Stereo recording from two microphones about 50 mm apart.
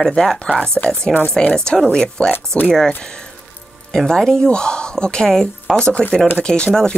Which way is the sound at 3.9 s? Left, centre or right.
Centre.